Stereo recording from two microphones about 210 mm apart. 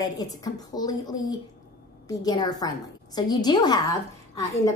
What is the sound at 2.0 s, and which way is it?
A woman's voice, 20° left (ahead or behind).